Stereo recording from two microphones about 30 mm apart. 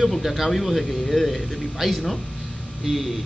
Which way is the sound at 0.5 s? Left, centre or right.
Centre.